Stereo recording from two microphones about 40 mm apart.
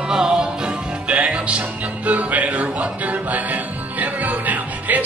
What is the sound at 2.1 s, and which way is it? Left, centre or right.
Music, right.